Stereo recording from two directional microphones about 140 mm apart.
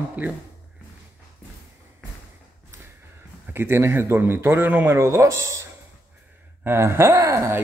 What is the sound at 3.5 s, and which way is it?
Speech, 15° right (ahead or behind).